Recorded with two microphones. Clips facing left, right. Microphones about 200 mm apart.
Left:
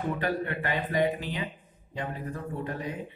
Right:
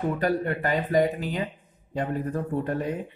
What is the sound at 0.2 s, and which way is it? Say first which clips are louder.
Speech: right 5 dB; 40° right (ahead or behind).